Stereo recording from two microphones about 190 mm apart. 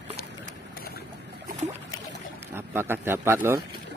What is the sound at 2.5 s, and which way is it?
Speech, 10° right (ahead or behind).